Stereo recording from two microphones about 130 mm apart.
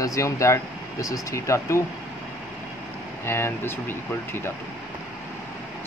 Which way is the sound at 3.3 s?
20° left (ahead or behind).